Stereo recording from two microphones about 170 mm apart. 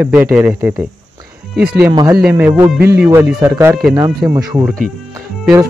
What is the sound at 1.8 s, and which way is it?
Speech, 15° right (ahead or behind).